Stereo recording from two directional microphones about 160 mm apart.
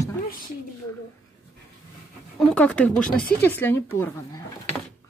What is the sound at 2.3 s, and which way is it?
A woman's voice, 10° left (ahead or behind).